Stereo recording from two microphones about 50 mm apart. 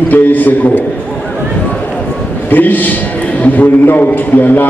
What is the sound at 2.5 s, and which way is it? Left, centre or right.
A man's voice, left.